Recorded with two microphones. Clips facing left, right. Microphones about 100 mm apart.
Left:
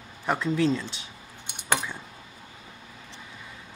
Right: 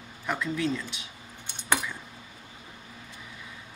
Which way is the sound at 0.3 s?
30° left (ahead or behind).